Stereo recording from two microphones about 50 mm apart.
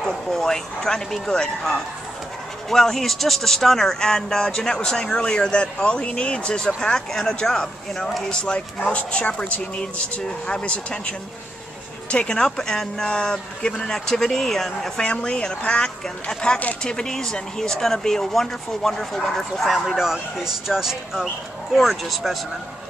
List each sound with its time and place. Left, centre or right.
0.0 s speech: centre
15.0 s speech: centre
20.0 s speech: centre